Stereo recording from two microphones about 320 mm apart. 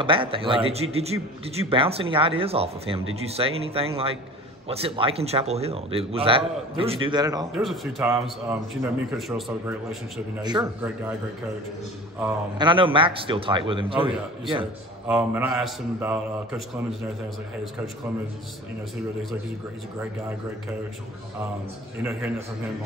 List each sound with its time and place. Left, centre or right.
0.0 s a man's voice: centre
7.5 s a man's voice: centre
12.2 s a man's voice: centre
15.0 s a man's voice: centre